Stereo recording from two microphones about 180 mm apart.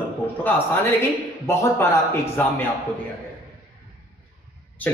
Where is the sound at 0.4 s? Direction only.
10° left (ahead or behind).